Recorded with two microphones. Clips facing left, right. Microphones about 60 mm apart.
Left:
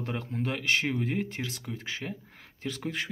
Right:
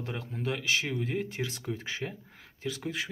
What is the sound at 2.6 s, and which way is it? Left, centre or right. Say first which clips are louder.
Speech: left 1 dB; centre.